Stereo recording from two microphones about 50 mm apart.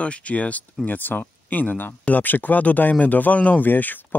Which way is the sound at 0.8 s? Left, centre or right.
Left.